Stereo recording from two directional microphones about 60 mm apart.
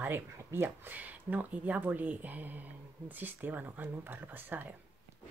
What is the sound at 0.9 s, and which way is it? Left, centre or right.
Speech, right.